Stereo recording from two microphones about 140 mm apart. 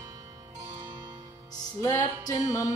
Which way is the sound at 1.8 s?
25° left (ahead or behind).